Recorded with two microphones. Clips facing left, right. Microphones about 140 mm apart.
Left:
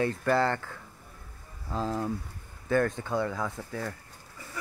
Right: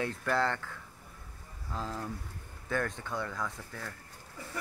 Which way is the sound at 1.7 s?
25° left (ahead or behind).